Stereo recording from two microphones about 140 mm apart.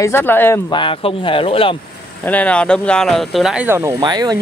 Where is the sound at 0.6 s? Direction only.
35° left (ahead or behind).